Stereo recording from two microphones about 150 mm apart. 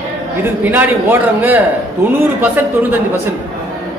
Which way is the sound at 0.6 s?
10° right (ahead or behind).